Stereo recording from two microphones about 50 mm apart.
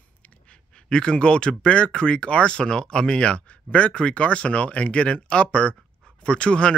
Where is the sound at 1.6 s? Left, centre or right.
Left.